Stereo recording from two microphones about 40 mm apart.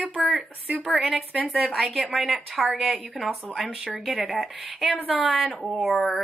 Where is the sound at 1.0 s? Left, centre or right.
Right.